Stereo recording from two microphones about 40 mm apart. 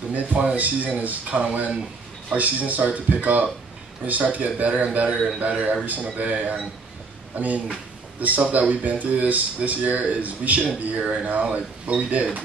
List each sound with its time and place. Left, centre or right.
0.1 s speech: right